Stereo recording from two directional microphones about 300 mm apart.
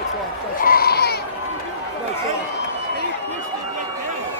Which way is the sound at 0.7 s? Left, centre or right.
Left.